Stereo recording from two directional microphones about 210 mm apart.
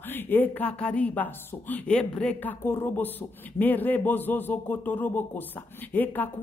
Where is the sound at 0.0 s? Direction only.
10° left (ahead or behind).